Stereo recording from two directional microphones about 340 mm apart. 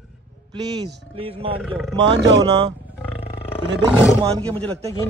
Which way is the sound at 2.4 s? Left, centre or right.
Centre.